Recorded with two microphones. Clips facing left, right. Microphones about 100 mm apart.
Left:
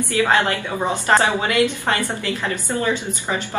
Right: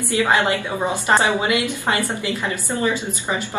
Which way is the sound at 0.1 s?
20° right (ahead or behind).